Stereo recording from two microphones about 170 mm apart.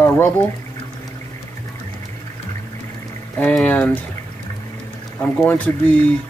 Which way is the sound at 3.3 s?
5° left (ahead or behind).